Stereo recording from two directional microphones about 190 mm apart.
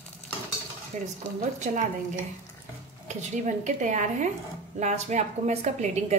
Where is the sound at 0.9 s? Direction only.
35° right (ahead or behind).